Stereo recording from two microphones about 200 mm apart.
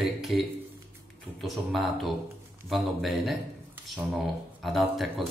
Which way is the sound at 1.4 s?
Centre (ahead or behind).